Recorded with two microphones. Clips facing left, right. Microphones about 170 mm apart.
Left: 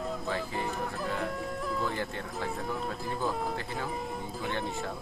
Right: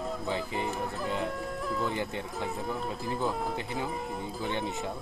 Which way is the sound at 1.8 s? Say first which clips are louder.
Right 1 dB; 15° right (ahead or behind).